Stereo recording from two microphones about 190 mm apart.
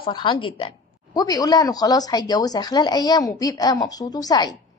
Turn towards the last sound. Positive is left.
turn(degrees=20)  # may be behind; listen again after turning